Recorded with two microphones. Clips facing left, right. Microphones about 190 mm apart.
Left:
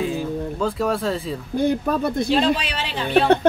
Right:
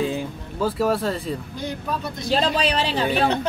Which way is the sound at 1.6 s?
55° left (ahead or behind).